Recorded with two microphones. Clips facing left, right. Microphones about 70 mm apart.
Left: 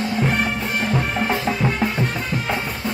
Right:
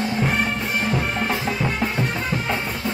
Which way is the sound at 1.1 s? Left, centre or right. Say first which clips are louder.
Left 2 dB; centre.